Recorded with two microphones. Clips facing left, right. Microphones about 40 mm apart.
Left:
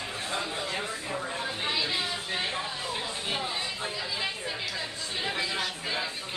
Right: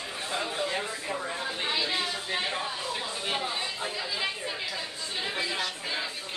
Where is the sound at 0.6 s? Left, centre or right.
Centre.